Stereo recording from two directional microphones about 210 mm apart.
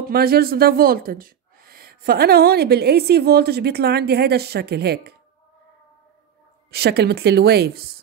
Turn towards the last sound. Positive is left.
turn(degrees=-50)  # may be behind; listen again after turning